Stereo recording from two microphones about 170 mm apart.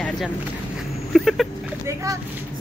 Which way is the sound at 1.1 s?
Centre (ahead or behind).